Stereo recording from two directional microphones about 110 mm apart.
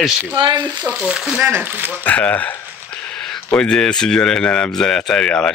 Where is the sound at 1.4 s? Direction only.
20° right (ahead or behind).